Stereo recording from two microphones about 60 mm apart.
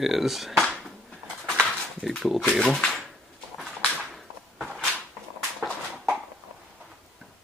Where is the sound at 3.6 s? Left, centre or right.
Centre.